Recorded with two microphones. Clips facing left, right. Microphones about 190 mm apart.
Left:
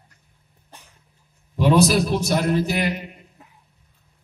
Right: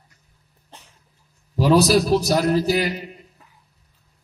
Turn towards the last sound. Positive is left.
turn(degrees=-35)  # may be behind; listen again after turning